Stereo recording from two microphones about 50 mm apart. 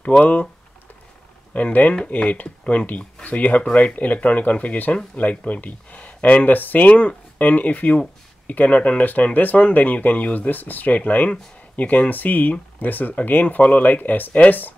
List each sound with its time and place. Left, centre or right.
0.2 s speech: left
1.5 s speech: left
2.6 s speech: left